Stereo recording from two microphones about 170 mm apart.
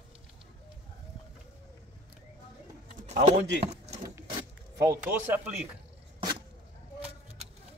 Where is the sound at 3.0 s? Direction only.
40° right (ahead or behind).